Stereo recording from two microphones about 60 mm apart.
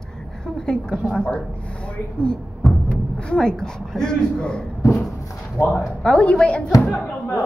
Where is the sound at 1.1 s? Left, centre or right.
Centre.